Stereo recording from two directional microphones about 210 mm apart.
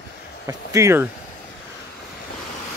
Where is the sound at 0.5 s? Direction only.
15° right (ahead or behind).